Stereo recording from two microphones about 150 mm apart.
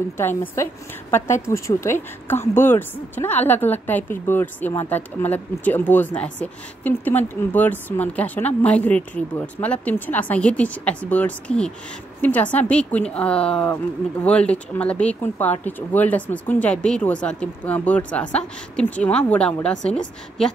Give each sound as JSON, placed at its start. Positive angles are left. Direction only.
{"t": 0.2, "sound": "a woman's voice", "side_deg": 15}